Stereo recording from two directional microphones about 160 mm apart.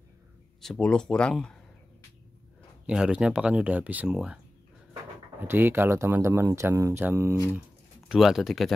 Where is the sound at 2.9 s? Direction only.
5° right (ahead or behind).